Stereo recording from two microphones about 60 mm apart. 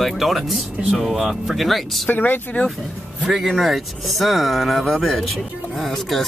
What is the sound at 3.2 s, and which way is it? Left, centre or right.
Speech, centre.